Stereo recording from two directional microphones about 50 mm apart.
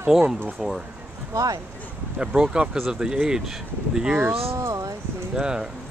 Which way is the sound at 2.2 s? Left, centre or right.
Centre.